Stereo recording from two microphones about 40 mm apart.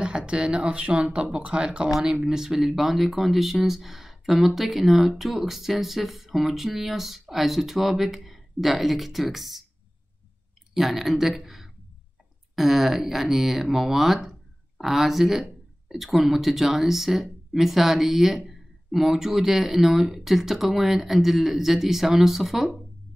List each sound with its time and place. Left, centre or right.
0.0 s a sound: right
0.7 s speech: right
2.2 s speech: centre
10.7 s speech: centre